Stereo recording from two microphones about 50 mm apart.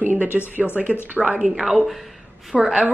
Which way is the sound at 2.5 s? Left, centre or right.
Centre.